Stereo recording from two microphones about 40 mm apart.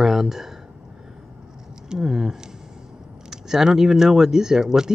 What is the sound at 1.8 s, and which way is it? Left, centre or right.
Speech, centre.